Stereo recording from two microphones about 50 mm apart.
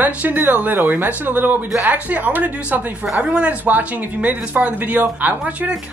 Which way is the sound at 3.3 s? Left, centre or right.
Right.